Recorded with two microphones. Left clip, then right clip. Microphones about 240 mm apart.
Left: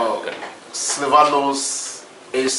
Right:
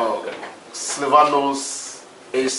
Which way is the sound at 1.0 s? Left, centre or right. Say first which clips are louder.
Left 1 dB; centre.